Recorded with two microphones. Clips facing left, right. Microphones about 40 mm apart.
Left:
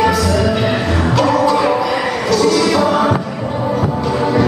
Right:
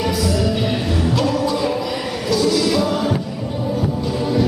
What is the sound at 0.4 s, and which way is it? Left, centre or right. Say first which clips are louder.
Music: left 4 dB; left.